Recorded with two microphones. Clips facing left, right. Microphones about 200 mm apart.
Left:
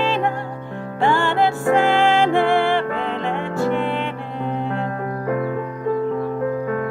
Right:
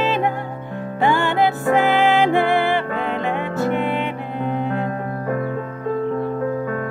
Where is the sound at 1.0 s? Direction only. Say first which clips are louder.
Even; 20° right (ahead or behind).